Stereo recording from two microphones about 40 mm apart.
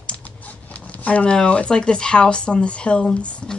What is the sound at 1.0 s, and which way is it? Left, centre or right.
Speech, left.